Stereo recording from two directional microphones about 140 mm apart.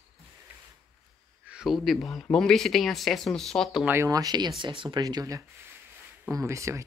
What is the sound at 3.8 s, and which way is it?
Speech, 20° right (ahead or behind).